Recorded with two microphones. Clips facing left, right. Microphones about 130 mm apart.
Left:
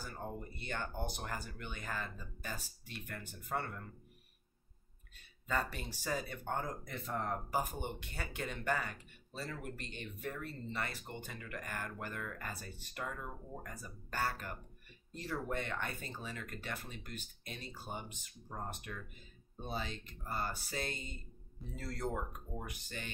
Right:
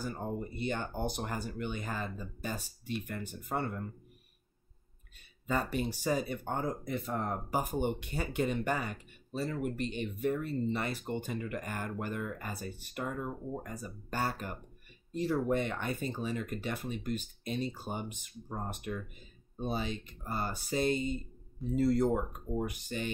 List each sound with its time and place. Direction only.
0.1 s speech: 20° right (ahead or behind)
5.5 s speech: 15° right (ahead or behind)